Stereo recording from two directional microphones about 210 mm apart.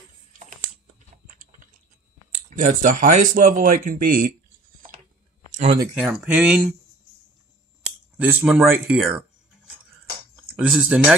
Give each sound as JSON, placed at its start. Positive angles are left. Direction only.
{"t": 0.3, "sound": "a sound", "side_deg": -40}
{"t": 2.3, "sound": "speech", "side_deg": -40}
{"t": 5.6, "sound": "speech", "side_deg": -25}
{"t": 5.9, "sound": "speech", "side_deg": -5}
{"t": 8.2, "sound": "speech", "side_deg": -5}
{"t": 10.3, "sound": "speech", "side_deg": 0}